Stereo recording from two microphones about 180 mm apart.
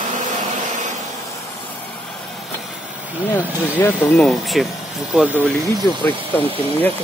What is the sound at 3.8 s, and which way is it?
Speech, 10° left (ahead or behind).